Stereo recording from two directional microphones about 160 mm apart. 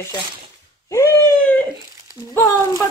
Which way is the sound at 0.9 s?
20° left (ahead or behind).